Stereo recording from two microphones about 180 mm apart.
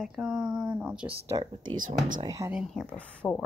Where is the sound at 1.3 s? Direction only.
25° right (ahead or behind).